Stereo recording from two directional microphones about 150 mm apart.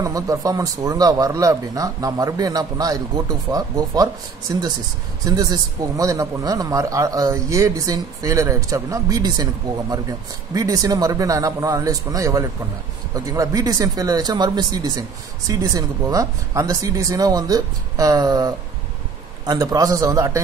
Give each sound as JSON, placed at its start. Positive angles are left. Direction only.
{"t": 0.0, "sound": "speech", "side_deg": -25}